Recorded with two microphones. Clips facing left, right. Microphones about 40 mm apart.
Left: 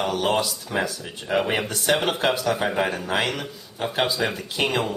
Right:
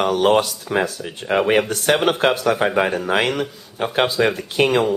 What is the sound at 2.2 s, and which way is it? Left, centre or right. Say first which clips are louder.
Speech: right 5 dB; right.